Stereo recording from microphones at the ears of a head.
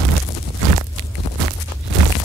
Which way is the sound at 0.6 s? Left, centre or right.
Right.